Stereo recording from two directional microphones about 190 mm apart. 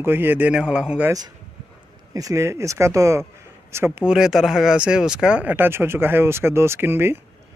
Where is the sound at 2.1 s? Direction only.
15° right (ahead or behind).